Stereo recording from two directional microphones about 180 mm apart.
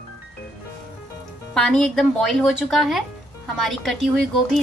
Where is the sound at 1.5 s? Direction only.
5° left (ahead or behind).